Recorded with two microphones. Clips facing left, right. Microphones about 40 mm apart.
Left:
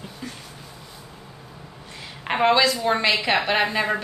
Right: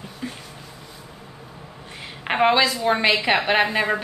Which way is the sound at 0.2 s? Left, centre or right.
Centre.